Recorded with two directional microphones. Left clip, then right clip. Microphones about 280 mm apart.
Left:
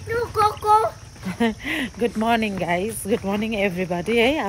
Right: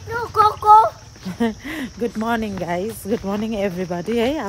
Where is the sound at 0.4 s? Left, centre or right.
Centre.